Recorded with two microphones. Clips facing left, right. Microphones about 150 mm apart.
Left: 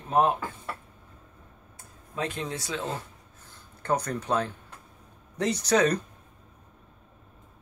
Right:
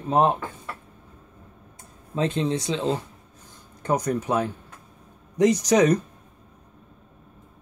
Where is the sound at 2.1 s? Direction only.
25° right (ahead or behind).